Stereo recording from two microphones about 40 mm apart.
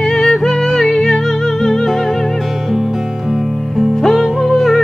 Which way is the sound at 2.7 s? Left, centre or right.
Centre.